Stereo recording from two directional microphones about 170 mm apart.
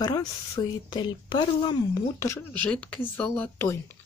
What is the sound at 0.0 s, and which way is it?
Speech, 25° left (ahead or behind).